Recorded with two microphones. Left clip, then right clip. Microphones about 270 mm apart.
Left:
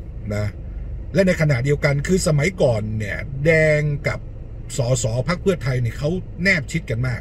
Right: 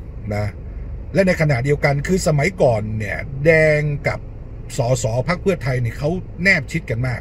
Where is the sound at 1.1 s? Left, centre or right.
Centre.